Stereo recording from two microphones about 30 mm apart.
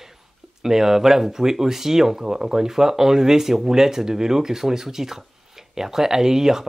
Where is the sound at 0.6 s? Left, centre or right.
Centre.